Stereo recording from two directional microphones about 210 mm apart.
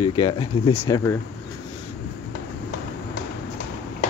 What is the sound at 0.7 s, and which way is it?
Speech, 10° left (ahead or behind).